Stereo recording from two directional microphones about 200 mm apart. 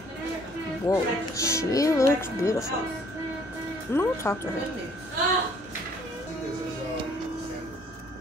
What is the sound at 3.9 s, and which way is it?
Speech, 15° left (ahead or behind).